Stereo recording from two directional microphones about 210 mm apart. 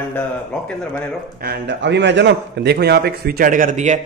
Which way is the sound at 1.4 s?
55° right (ahead or behind).